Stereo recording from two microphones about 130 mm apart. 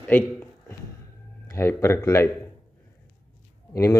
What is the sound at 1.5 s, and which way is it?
Speech, 25° left (ahead or behind).